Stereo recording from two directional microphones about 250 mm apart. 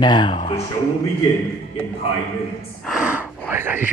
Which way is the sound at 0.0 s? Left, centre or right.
Centre.